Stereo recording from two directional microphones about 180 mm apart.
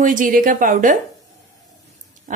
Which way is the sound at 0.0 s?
45° right (ahead or behind).